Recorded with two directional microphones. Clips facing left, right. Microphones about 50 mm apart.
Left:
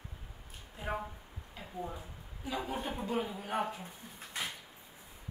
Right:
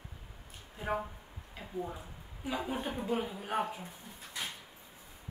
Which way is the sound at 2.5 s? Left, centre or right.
Centre.